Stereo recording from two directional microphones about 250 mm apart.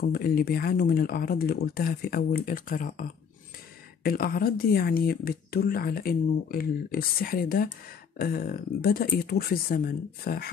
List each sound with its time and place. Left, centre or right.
0.0 s speech: left